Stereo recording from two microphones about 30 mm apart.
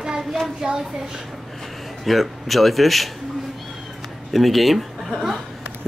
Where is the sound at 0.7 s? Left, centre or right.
Right.